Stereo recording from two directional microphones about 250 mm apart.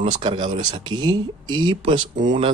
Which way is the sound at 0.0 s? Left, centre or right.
Right.